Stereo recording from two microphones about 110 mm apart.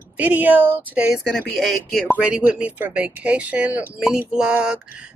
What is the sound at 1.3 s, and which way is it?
Speech, centre (ahead or behind).